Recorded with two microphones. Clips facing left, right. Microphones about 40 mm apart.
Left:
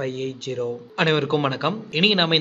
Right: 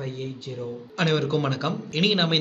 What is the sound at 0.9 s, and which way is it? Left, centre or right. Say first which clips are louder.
A man's voice: left 3 dB; left.